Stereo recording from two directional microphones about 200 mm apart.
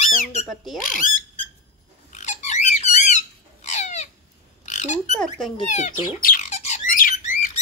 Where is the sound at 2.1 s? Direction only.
35° left (ahead or behind).